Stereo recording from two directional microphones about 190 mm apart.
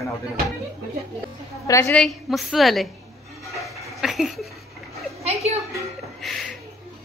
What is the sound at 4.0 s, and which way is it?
Speech, centre (ahead or behind).